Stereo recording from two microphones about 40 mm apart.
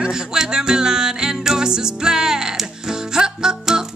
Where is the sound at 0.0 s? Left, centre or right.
Centre.